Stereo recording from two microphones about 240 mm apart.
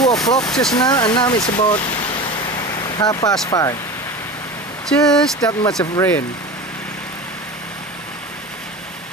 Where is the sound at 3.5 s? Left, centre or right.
Centre.